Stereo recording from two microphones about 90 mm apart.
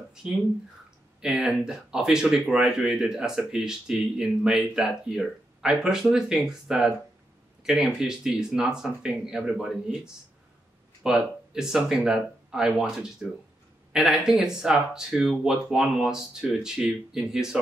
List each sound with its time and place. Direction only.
1.2 s speech: 5° right (ahead or behind)